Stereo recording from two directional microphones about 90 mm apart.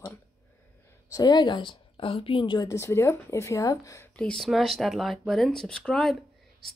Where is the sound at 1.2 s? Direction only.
55° left (ahead or behind).